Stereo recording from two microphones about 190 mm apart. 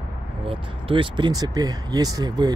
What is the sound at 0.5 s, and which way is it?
Speech, 30° right (ahead or behind).